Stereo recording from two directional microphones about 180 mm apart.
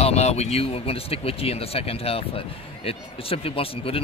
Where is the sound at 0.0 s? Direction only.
35° left (ahead or behind).